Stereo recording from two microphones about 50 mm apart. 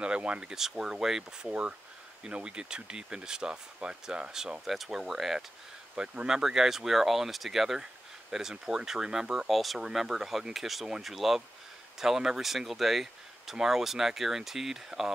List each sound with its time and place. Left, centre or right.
0.0 s speech: right
0.5 s speech: centre
1.5 s speech: right; by 5.4 s centre
5.9 s speech: centre
9.5 s speech: centre